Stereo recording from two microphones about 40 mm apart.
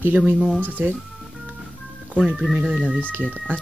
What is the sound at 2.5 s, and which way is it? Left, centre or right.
Speech, right.